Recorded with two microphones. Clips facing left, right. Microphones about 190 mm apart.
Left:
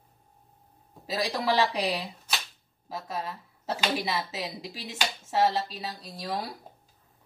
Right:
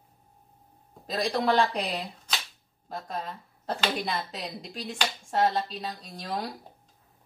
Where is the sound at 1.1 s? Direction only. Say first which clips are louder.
Right 2 dB; 5° left (ahead or behind).